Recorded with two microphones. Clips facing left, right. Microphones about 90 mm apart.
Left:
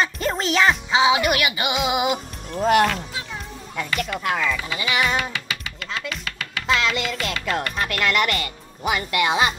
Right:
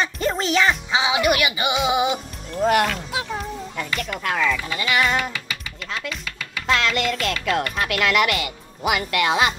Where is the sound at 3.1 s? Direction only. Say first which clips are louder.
Right 6 dB; 90° right.